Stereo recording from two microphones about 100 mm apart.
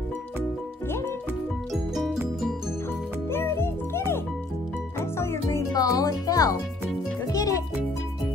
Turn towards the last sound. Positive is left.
turn(degrees=35)  # may be behind; listen again after turning